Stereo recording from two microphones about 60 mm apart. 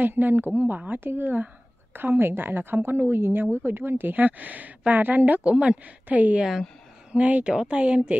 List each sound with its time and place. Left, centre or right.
0.0 s a woman's voice: right